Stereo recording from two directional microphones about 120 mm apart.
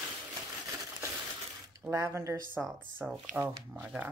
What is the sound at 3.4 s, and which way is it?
Speech, centre (ahead or behind).